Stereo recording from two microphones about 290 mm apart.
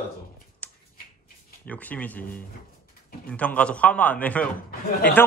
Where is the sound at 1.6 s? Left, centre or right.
Centre.